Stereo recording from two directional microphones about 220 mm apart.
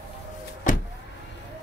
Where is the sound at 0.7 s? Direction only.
35° left (ahead or behind).